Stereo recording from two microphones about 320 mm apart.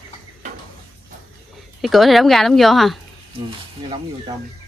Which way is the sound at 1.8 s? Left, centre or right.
Centre.